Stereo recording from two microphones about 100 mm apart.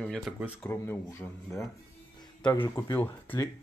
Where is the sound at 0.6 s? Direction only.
20° left (ahead or behind).